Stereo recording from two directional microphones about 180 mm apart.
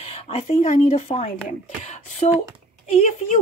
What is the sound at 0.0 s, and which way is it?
Speech, 35° left (ahead or behind).